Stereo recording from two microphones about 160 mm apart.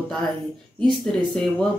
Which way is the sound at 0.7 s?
5° left (ahead or behind).